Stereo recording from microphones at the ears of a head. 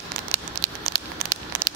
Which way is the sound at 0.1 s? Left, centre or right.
Right.